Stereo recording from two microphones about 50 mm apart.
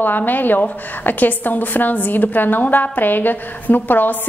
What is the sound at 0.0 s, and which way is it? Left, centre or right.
A woman's voice, left.